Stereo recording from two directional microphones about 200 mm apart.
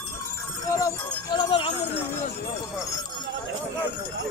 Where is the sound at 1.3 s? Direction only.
25° left (ahead or behind).